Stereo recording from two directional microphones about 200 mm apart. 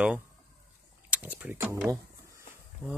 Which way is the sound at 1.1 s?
5° right (ahead or behind).